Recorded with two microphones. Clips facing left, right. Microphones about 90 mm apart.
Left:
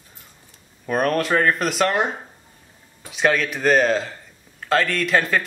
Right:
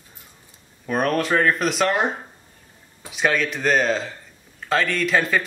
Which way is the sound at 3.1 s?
Centre (ahead or behind).